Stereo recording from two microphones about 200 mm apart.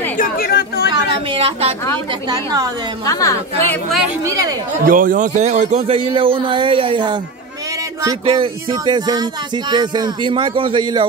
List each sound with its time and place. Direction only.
0.2 s chatter: 50° left (ahead or behind)
1.3 s speech: 30° right (ahead or behind)
2.2 s speech: 20° right (ahead or behind)
3.1 s a woman's voice: 15° left (ahead or behind)
4.2 s speech: 15° right (ahead or behind)
4.8 s speech: 45° right (ahead or behind); by 11.1 s 25° right (ahead or behind)